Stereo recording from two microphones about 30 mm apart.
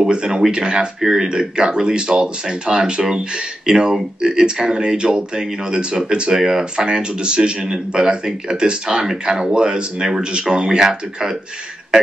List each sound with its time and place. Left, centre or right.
0.0 s speech: right
6.3 s speech: centre
6.9 s speech: right